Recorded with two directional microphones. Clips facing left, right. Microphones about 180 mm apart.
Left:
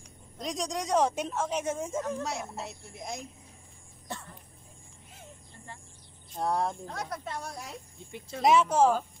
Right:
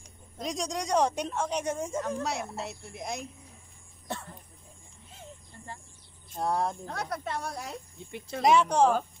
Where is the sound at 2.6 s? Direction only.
65° right (ahead or behind).